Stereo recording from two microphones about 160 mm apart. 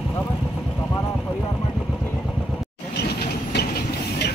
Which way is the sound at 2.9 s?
85° left.